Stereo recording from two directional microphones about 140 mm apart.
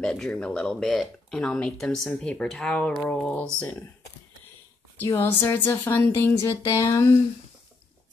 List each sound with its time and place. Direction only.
0.0 s speech: 5° left (ahead or behind)
4.9 s speech: 20° left (ahead or behind)